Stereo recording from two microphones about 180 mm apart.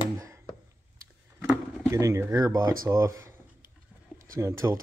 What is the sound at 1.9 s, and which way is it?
Speech, 15° right (ahead or behind).